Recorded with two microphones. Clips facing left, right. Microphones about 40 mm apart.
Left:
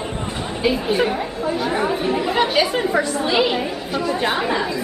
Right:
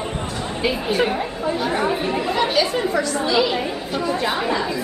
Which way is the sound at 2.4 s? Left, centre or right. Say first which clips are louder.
Left 1 dB; left.